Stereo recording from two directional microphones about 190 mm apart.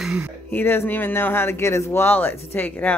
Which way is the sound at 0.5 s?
10° left (ahead or behind).